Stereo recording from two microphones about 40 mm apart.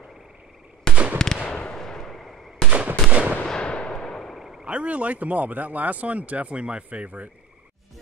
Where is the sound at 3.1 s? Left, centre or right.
Right.